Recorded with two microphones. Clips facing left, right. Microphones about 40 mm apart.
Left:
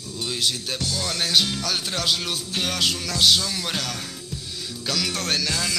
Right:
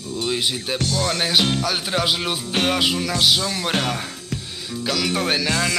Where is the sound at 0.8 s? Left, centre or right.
Right.